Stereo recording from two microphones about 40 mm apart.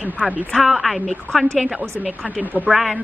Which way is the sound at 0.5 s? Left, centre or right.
Centre.